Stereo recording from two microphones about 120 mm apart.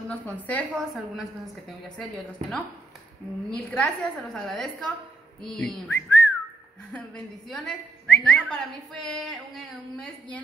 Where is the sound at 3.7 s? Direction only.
5° left (ahead or behind).